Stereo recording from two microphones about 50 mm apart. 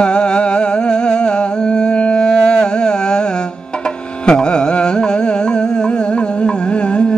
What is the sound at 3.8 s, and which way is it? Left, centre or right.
Carnatic music, centre.